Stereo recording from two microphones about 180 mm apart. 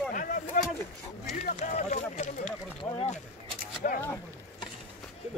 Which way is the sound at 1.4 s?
45° left (ahead or behind).